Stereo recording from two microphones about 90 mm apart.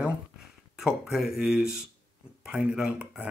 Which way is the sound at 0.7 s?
5° right (ahead or behind).